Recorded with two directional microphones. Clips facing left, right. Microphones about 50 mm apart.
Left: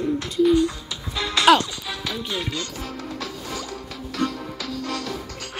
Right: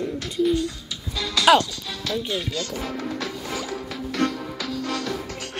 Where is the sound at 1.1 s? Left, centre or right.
Left.